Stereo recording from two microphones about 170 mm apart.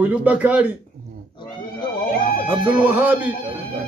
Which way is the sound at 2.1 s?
55° left (ahead or behind).